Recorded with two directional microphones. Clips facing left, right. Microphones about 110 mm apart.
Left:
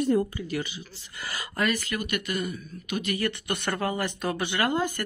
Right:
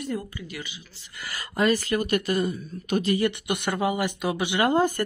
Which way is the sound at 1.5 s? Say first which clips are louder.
Right 6 dB; 30° right (ahead or behind).